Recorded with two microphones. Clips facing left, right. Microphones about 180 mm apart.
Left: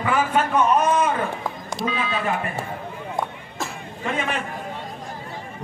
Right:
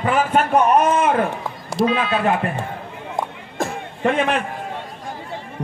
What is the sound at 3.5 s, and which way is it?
Music, 60° right (ahead or behind).